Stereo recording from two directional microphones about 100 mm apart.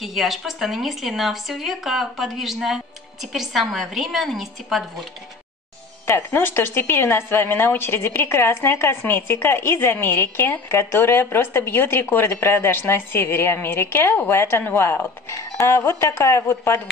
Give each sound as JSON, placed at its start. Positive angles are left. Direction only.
{"t": 0.0, "sound": "speech", "side_deg": 0}
{"t": 6.0, "sound": "speech", "side_deg": 25}